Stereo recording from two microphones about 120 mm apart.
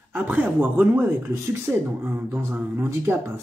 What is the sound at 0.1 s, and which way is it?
A woman's voice, 15° right (ahead or behind).